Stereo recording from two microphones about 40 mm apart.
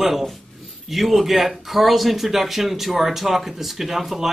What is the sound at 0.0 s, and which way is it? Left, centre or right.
A man's voice, centre.